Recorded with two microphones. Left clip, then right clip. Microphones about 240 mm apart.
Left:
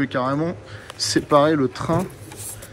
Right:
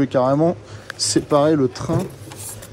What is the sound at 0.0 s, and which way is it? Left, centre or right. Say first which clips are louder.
Speech: right 6 dB; right.